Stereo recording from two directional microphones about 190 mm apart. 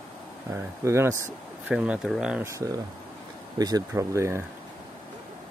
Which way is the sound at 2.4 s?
15° right (ahead or behind).